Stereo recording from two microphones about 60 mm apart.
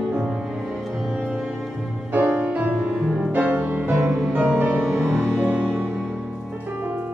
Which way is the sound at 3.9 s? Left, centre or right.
Right.